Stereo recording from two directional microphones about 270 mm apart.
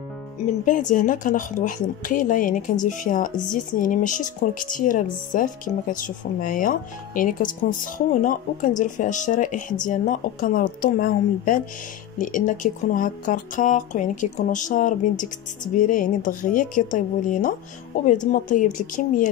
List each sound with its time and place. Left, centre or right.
0.5 s speech: left